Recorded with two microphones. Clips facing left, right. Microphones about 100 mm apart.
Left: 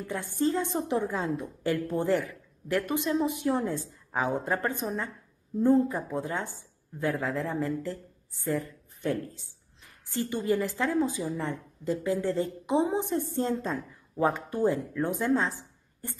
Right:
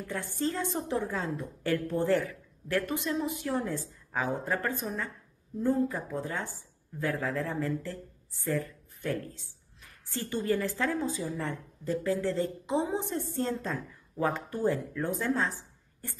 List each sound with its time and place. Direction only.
0.0 s a woman's voice: 20° left (ahead or behind)